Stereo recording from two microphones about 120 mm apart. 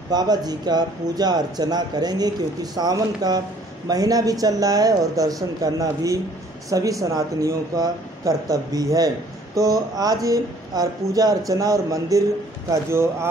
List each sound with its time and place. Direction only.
0.1 s speech: 35° right (ahead or behind)